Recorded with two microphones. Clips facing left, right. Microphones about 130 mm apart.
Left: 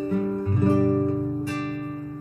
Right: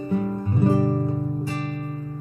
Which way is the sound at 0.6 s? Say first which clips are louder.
Even; 25° right (ahead or behind).